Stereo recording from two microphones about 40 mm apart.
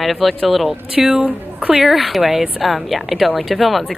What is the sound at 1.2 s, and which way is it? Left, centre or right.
Speech, right.